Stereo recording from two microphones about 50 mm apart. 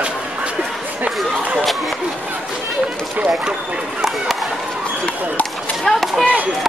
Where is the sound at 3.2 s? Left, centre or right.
Right.